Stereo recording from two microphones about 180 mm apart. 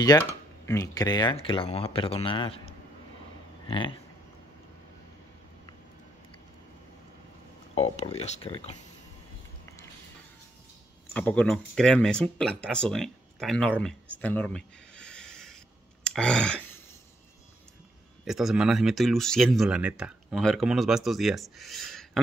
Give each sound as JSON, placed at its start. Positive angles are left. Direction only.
{"t": 0.7, "sound": "speech", "side_deg": 20}
{"t": 3.6, "sound": "speech", "side_deg": 30}
{"t": 7.7, "sound": "speech", "side_deg": 35}
{"t": 11.1, "sound": "speech", "side_deg": 10}
{"t": 14.2, "sound": "a sound", "side_deg": 10}
{"t": 18.2, "sound": "speech", "side_deg": 0}